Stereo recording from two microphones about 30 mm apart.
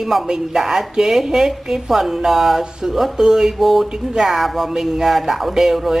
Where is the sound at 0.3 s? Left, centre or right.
Centre.